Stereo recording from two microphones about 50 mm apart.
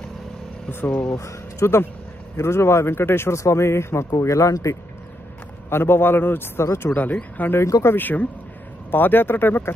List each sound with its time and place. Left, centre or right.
0.7 s speech: left
1.1 s speech: left
2.3 s speech: left
3.3 s a man's voice: left
5.7 s a man's voice: left
7.5 s speech: left
7.9 s a man's voice: left